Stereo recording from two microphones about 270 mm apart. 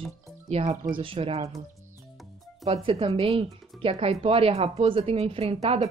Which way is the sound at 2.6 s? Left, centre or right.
Right.